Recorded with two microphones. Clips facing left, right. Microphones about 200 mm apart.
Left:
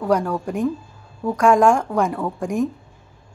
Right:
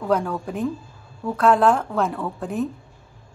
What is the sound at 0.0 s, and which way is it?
A woman's voice, 10° left (ahead or behind).